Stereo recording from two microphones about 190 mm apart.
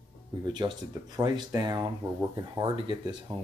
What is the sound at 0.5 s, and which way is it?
Speech, 25° right (ahead or behind).